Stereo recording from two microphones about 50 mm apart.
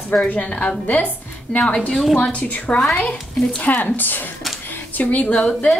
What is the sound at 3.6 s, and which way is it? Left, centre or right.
A woman's voice, left.